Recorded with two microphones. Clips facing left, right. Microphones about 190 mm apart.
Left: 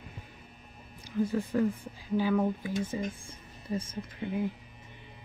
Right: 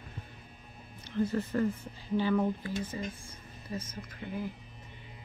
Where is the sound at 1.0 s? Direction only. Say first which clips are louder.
Left 1 dB; 10° left (ahead or behind).